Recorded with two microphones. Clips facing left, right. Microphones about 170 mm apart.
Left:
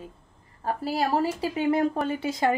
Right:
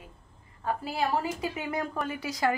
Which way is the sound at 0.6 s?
35° left (ahead or behind).